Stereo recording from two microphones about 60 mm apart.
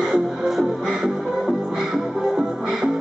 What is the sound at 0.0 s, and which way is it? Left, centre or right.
Music, centre.